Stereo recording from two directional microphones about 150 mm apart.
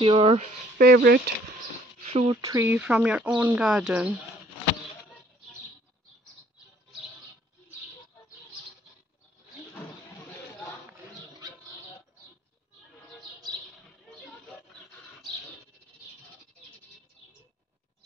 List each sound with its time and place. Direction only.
0.0 s speech: 35° right (ahead or behind)
0.7 s speech: 90° right
2.0 s a sound: 35° right (ahead or behind)
2.5 s speech: 15° right (ahead or behind)